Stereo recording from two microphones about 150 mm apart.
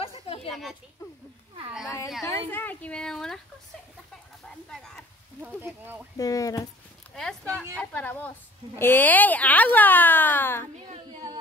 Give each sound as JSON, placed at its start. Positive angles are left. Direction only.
{"t": 0.0, "sound": "a sound", "side_deg": 40}
{"t": 0.5, "sound": "a child's voice", "side_deg": 0}
{"t": 2.5, "sound": "speech", "side_deg": 10}
{"t": 4.6, "sound": "speech", "side_deg": 5}
{"t": 5.4, "sound": "speech", "side_deg": -15}
{"t": 6.1, "sound": "speech", "side_deg": 25}
{"t": 7.2, "sound": "speech", "side_deg": 5}